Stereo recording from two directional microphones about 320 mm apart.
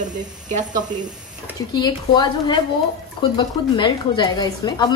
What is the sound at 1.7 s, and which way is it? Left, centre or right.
A woman's voice, centre.